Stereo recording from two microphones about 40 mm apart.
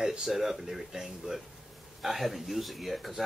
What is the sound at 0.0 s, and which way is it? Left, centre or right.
Speech, centre.